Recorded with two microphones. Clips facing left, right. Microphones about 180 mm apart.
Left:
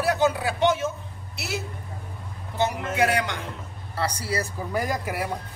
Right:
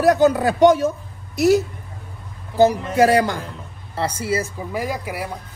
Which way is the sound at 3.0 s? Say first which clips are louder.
Right 8 dB; 35° right (ahead or behind).